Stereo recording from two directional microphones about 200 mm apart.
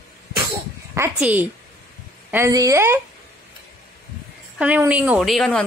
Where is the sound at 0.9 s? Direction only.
10° right (ahead or behind).